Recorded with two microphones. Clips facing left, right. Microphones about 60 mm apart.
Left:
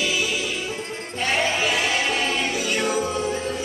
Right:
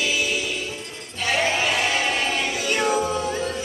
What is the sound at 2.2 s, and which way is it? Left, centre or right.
Choir, centre.